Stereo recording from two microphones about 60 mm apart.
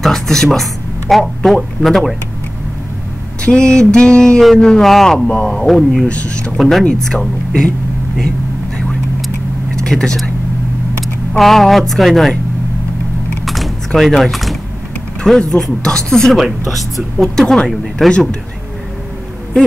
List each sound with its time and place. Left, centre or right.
0.0 s speech: centre
3.4 s speech: centre
4.4 s speech: centre
5.7 s speech: centre
6.0 s speech: centre
9.8 s speech: centre
11.3 s speech: centre
13.5 s a sound: centre
15.2 s speech: centre